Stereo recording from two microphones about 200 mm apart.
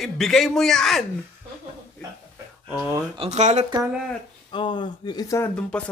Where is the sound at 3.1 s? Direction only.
30° right (ahead or behind).